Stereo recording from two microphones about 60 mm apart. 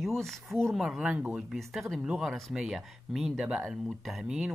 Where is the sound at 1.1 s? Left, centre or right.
Right.